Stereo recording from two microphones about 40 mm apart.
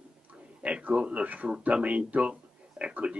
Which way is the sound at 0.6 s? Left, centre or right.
Right.